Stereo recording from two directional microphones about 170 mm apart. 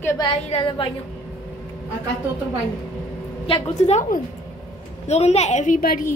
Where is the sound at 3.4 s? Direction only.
35° left (ahead or behind).